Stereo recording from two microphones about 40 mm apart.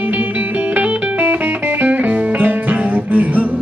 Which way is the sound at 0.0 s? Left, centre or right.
Right.